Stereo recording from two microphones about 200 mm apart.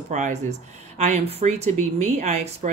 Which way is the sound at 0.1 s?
35° right (ahead or behind).